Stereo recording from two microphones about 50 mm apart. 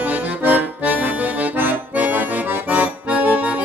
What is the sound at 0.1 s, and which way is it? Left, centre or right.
Accordion, right.